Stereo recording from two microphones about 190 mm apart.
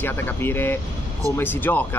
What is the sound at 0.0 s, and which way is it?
Speech, 10° left (ahead or behind).